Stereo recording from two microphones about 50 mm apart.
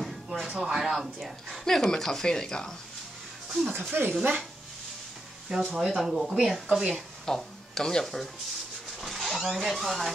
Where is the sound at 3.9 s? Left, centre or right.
Right.